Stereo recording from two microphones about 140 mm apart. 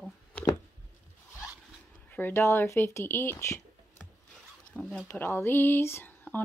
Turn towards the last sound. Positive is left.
turn(degrees=15)  # may be behind; listen again after turning